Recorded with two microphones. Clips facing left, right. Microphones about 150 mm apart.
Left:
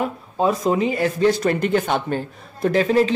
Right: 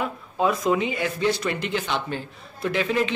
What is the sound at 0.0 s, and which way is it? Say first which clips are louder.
Speech: left 3 dB; 35° left (ahead or behind).